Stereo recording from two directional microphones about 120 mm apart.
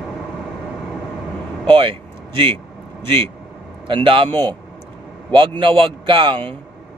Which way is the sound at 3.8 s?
45° right (ahead or behind).